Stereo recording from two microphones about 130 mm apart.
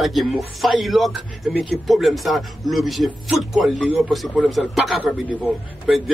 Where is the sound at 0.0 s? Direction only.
Centre (ahead or behind).